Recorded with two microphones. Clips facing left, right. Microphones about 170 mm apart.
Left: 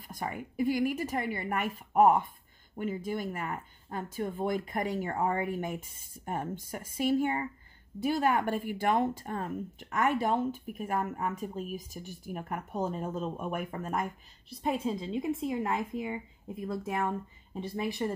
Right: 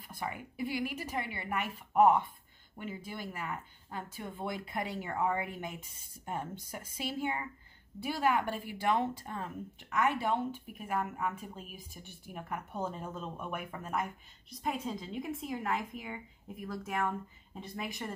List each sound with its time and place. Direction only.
0.0 s a woman's voice: 45° left (ahead or behind)
14.5 s speech: 30° left (ahead or behind)